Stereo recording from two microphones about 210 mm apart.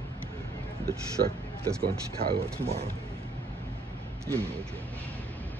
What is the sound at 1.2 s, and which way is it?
Speech, 45° right (ahead or behind).